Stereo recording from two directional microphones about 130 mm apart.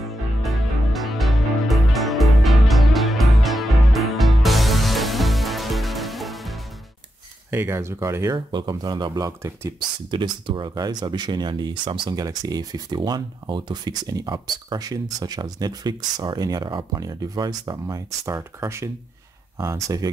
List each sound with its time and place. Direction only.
0.4 s music: centre (ahead or behind)
7.5 s speech: 20° right (ahead or behind)
8.5 s speech: 35° right (ahead or behind)
9.8 s speech: 35° right (ahead or behind)